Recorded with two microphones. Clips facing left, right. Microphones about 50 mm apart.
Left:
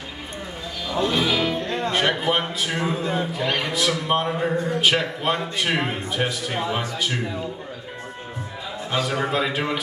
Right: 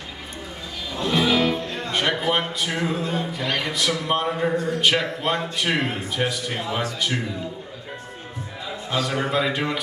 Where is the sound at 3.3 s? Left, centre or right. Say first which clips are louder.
Left 2 dB; centre.